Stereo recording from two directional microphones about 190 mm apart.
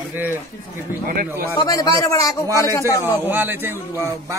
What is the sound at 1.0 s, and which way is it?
Speech, 50° right (ahead or behind).